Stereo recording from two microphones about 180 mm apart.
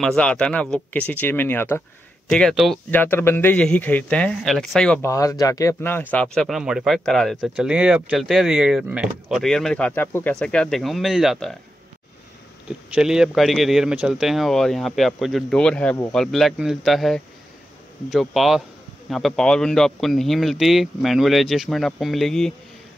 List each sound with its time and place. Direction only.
0.0 s a man's voice: 5° left (ahead or behind)
2.9 s a man's voice: 10° left (ahead or behind)
5.0 s a man's voice: 15° left (ahead or behind); by 11.5 s centre (ahead or behind)
12.9 s speech: 5° right (ahead or behind)